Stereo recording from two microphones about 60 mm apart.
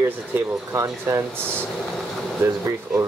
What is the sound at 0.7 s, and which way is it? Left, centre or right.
Speech, right.